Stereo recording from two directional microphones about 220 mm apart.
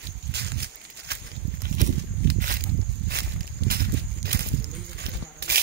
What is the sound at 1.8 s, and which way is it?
Walk, 40° right (ahead or behind).